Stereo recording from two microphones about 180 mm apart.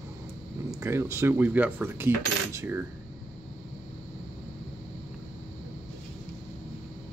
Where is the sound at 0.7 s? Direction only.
15° right (ahead or behind).